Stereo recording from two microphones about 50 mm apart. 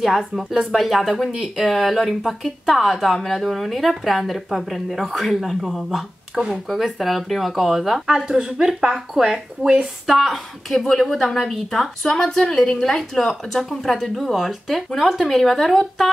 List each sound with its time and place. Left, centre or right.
0.0 s a woman's voice: centre
6.3 s speech: centre
6.7 s a woman's voice: centre